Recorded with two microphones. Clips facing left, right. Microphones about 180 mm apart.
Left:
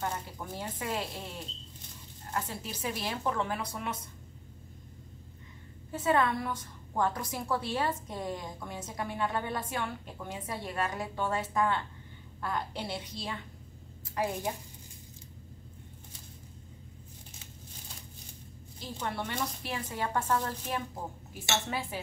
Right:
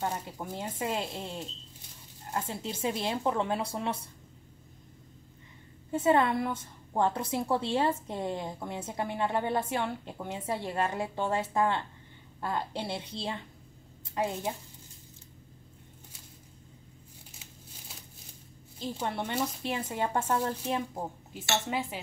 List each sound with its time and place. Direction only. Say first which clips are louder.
0.0 s a woman's voice: right 2 dB; 25° right (ahead or behind)
5.9 s a woman's voice: right 3 dB; 25° right (ahead or behind)
18.8 s a woman's voice: right 3 dB; 25° right (ahead or behind)